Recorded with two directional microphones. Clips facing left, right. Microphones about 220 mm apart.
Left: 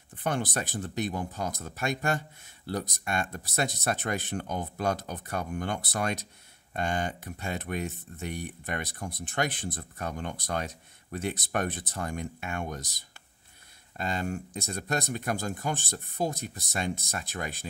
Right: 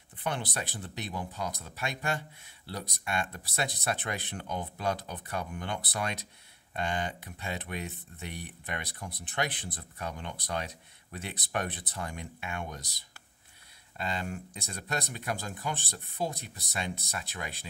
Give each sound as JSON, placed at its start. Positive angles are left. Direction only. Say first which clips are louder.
{"t": 0.2, "sound": "speech", "louder": "left 4 dB", "side_deg": 45}